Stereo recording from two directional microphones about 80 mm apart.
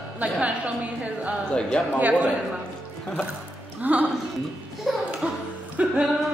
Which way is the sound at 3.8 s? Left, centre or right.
Right.